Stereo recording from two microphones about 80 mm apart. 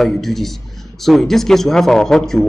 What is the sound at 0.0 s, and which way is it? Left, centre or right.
A man's voice, centre.